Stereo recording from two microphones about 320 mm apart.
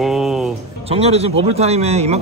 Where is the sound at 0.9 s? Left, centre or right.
Centre.